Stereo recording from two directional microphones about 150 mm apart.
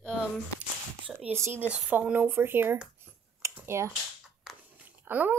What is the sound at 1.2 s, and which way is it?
Speech, 15° right (ahead or behind).